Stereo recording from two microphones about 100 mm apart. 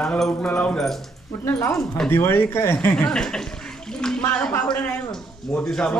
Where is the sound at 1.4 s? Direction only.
25° left (ahead or behind); by 3.4 s 5° left (ahead or behind).